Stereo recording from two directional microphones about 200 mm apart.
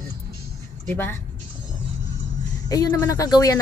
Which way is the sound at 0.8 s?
10° left (ahead or behind).